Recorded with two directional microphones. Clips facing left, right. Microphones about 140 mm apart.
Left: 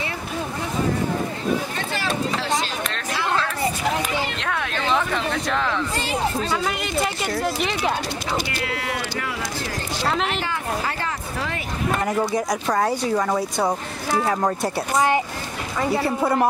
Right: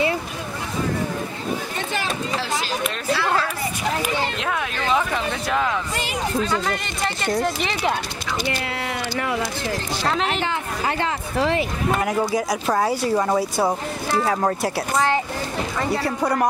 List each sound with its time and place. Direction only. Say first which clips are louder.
3.9 s a sound: right 1 dB; 5° right (ahead or behind)
6.5 s speech: left 1 dB; 5° left (ahead or behind)
11.0 s speech: right 5 dB; 25° right (ahead or behind)
12.0 s speech: left 1 dB; 5° right (ahead or behind)